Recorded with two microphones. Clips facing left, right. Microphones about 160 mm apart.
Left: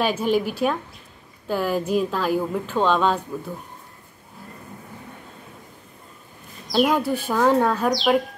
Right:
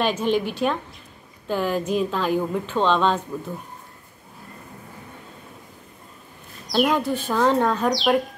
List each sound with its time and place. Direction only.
0.0 s speech: 5° left (ahead or behind)
6.7 s speech: 5° left (ahead or behind)